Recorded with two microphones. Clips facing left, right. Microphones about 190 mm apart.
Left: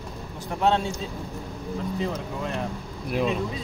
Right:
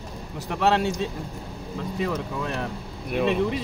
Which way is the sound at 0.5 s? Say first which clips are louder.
Right 1 dB; 80° right.